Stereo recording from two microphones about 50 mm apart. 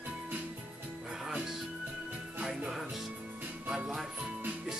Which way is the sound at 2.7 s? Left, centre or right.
Centre.